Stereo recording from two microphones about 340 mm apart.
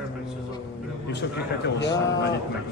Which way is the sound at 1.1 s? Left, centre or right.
Left.